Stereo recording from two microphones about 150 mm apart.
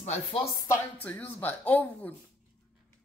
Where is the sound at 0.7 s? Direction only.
10° left (ahead or behind).